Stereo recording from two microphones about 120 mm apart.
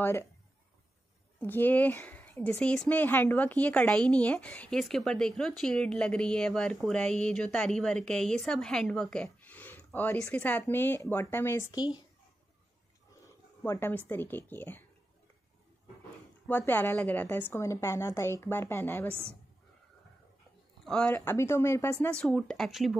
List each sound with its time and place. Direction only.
1.4 s a woman's voice: 15° left (ahead or behind)
13.7 s speech: 20° left (ahead or behind)
16.4 s a woman's voice: 15° left (ahead or behind)
20.8 s speech: 5° left (ahead or behind)
21.1 s a woman's voice: 15° left (ahead or behind)
22.2 s speech: 5° left (ahead or behind)